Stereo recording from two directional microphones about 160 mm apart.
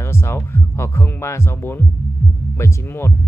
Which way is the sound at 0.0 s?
15° left (ahead or behind).